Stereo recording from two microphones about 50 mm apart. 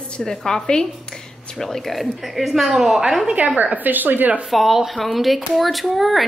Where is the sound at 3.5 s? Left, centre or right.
Right.